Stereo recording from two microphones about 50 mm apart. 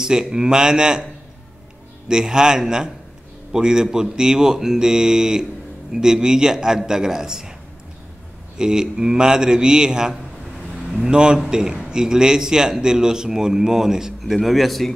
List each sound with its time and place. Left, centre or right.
0.0 s a man's voice: centre
2.0 s a man's voice: centre
8.5 s a man's voice: centre